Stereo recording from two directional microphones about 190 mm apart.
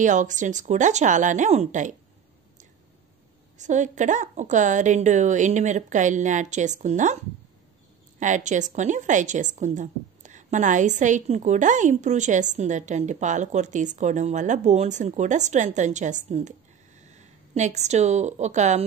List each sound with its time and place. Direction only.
0.0 s a woman's voice: 40° right (ahead or behind)
3.5 s a woman's voice: 40° right (ahead or behind)
8.2 s a woman's voice: 40° right (ahead or behind)